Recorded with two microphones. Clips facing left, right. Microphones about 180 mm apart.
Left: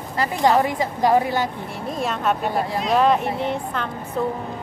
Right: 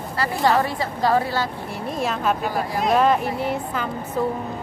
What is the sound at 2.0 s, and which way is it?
Speech, centre (ahead or behind).